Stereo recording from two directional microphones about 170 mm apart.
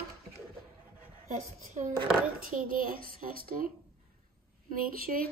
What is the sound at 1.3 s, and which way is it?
A woman's voice, 45° right (ahead or behind).